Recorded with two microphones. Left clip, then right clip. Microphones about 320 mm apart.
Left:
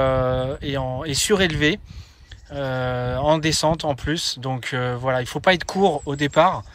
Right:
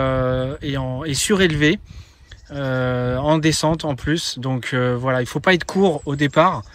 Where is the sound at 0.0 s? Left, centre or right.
Centre.